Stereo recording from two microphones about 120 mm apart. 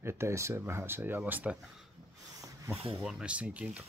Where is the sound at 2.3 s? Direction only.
30° right (ahead or behind).